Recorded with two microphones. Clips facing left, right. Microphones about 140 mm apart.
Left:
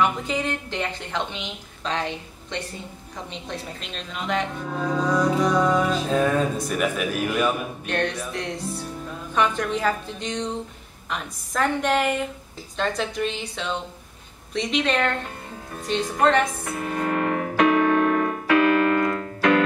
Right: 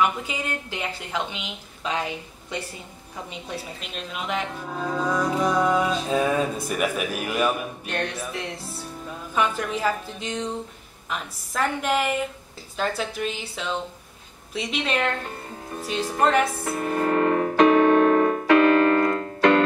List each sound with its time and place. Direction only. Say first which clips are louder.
0.0 s a woman's voice: left 2 dB; 5° right (ahead or behind)
16.6 s keyboard: right 2 dB; 35° right (ahead or behind)